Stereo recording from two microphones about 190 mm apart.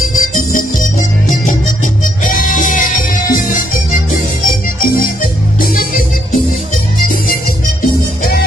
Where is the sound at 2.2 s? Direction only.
45° left (ahead or behind).